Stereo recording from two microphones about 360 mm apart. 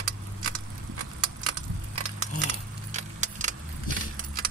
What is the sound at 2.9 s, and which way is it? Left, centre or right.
Keys jangling, centre.